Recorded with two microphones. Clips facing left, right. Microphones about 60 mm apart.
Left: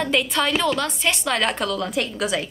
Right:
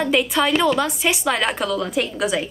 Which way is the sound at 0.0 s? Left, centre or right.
Centre.